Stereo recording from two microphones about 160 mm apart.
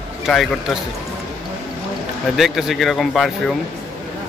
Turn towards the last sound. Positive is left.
turn(degrees=0)  # may be behind; listen again after turning